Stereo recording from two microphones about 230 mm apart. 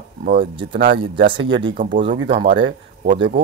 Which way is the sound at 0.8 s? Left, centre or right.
Right.